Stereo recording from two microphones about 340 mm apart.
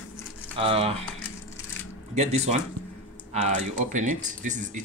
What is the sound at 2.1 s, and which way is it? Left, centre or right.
Speech, centre.